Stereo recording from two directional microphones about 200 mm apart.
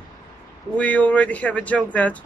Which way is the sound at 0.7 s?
5° left (ahead or behind).